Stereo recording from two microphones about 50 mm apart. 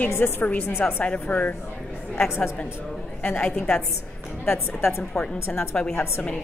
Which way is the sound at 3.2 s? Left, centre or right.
Left.